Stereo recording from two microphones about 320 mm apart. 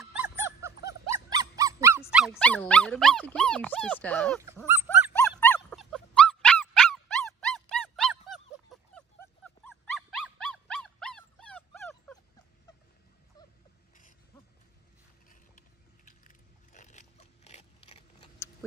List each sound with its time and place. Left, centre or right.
0.0 s dog: centre
2.0 s speech: centre
5.1 s dog: centre
16.1 s biting: left